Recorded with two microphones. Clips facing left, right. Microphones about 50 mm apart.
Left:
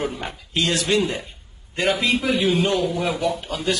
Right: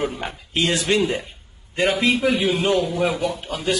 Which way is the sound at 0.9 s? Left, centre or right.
Right.